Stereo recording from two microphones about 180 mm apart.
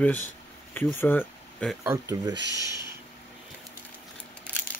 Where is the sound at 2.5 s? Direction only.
25° left (ahead or behind).